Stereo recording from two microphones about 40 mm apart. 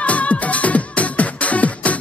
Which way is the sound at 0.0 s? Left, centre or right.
Left.